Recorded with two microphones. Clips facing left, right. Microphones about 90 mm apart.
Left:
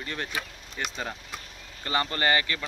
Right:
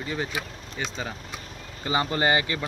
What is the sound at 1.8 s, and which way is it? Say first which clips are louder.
Speech: right 3 dB; 15° right (ahead or behind).